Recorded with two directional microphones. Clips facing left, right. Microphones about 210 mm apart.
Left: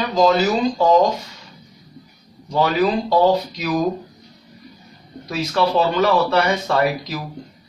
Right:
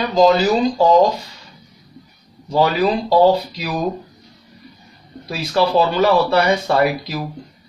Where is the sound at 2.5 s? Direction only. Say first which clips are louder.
Right 1 dB; 35° right (ahead or behind).